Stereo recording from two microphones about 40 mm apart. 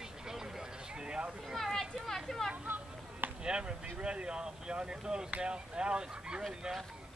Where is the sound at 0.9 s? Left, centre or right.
Right.